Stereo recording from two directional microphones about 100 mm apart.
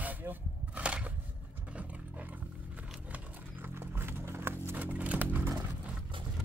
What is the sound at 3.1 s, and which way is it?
Clip-clop, 20° right (ahead or behind).